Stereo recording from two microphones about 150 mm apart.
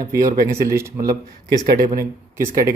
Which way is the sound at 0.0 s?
20° right (ahead or behind).